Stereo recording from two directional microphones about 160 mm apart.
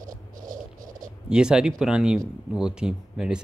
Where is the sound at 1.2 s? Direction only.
5° right (ahead or behind).